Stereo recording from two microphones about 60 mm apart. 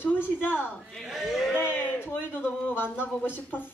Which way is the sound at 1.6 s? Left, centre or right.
Left.